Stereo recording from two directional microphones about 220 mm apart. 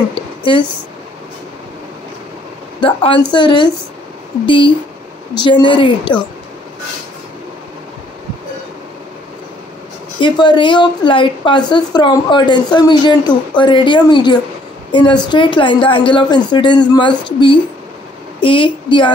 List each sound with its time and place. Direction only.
2.8 s a woman's voice: 25° left (ahead or behind)
10.2 s a woman's voice: 20° left (ahead or behind)